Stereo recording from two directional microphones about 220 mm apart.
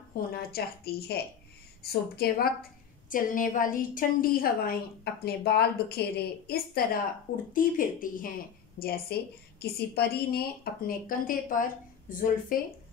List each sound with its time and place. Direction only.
0.3 s a woman's voice: 45° left (ahead or behind)